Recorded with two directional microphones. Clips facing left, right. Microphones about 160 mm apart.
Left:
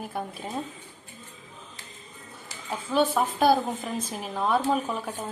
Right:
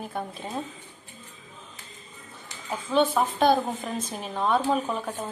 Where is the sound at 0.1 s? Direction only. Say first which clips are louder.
Even; 5° left (ahead or behind).